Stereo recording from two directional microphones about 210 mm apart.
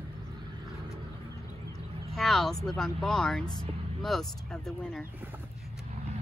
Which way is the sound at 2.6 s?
Centre (ahead or behind).